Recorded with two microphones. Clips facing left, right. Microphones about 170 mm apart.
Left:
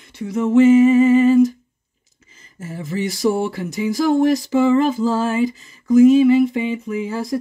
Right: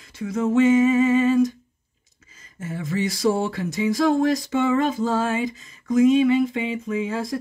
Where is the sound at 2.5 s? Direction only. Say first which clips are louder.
Left 1 dB; 30° left (ahead or behind).